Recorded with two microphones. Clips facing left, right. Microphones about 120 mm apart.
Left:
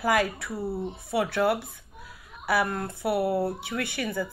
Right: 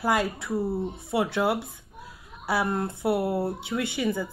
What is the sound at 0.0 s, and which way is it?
Speech, 15° right (ahead or behind).